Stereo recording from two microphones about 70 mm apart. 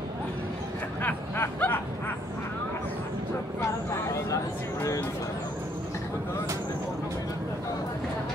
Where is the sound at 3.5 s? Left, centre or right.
Left.